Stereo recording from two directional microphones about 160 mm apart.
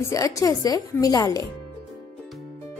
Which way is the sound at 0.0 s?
20° left (ahead or behind).